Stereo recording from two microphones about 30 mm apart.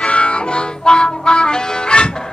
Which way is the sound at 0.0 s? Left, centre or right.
Left.